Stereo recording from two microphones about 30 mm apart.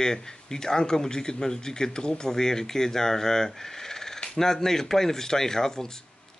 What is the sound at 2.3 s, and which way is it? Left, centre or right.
Speech, centre.